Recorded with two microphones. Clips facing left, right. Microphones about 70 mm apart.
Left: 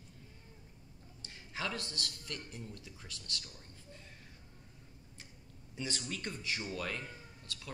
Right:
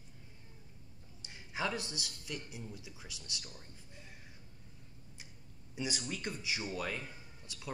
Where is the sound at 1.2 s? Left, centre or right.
Centre.